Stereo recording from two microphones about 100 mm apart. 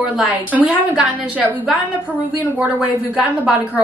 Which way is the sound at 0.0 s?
5° right (ahead or behind).